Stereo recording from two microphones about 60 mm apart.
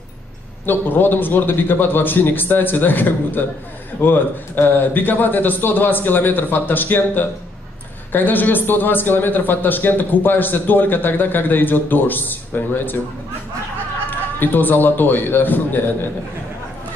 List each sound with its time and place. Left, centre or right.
0.7 s a man's voice: left
14.4 s a man's voice: left